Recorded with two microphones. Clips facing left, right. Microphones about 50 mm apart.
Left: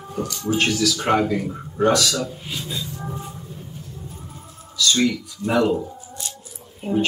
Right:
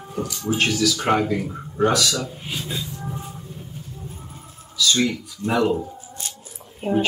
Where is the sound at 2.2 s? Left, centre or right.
Centre.